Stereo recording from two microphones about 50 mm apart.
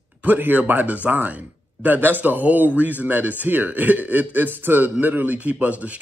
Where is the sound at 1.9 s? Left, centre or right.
Right.